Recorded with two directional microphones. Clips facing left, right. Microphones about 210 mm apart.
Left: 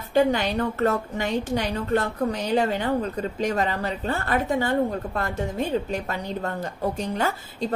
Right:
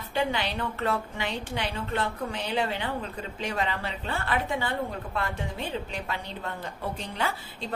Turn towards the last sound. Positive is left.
turn(degrees=45)  # may be behind; listen again after turning